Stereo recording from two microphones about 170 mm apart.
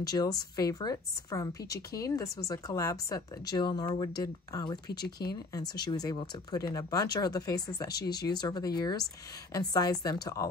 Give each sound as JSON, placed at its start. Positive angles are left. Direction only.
{"t": 0.0, "sound": "speech", "side_deg": 20}
{"t": 5.0, "sound": "speech", "side_deg": 70}
{"t": 5.5, "sound": "speech", "side_deg": 25}